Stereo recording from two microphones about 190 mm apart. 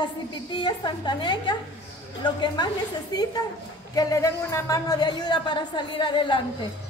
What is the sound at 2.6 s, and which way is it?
Speech, 25° left (ahead or behind).